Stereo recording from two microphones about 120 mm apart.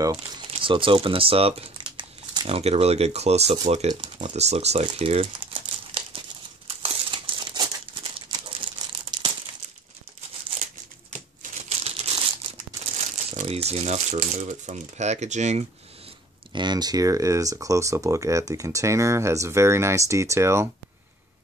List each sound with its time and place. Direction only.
0.0 s speech: 30° right (ahead or behind)
0.5 s speech: 45° right (ahead or behind); by 4.8 s 65° right (ahead or behind)
4.8 s crumpling: 55° right (ahead or behind)
8.3 s a sound: 40° right (ahead or behind)
11.8 s crumpling: 55° right (ahead or behind)
13.4 s speech: 60° right (ahead or behind); by 15.6 s 75° right (ahead or behind)
16.5 s speech: 35° right (ahead or behind)